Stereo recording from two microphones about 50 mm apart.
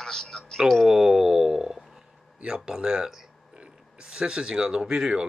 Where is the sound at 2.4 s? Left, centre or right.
Centre.